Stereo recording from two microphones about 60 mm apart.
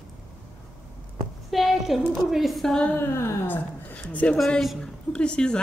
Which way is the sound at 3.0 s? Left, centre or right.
Left.